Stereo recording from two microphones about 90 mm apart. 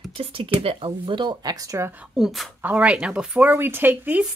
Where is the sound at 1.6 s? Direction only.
35° right (ahead or behind).